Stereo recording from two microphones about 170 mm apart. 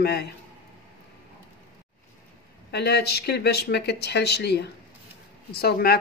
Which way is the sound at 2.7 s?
75° left (ahead or behind).